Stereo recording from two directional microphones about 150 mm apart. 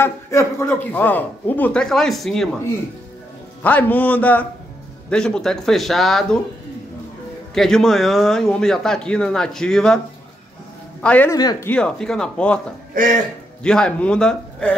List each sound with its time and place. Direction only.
0.0 s a man's voice: 20° left (ahead or behind); by 2.5 s centre (ahead or behind)
3.6 s a man's voice: 10° left (ahead or behind)
7.5 s speech: centre (ahead or behind)
11.0 s speech: 10° left (ahead or behind)
11.2 s speech: 25° left (ahead or behind)
11.6 s a man's voice: 5° left (ahead or behind)
13.0 s a man's voice: 60° right (ahead or behind)
13.6 s speech: 5° left (ahead or behind)